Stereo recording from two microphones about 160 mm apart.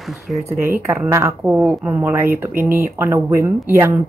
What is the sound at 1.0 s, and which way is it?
Speech, 15° right (ahead or behind).